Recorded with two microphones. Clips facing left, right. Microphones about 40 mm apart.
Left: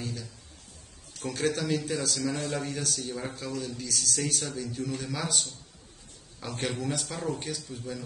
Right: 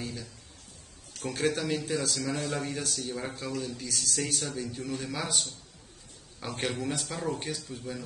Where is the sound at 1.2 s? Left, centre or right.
Centre.